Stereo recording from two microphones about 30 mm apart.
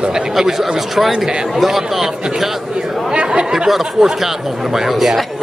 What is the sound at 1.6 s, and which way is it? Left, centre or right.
Speech, centre.